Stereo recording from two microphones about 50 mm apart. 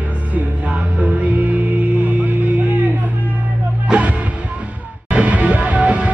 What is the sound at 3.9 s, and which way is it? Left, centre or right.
Music, centre.